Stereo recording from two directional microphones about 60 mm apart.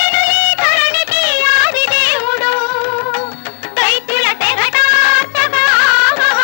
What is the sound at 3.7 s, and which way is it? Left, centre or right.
Music, left.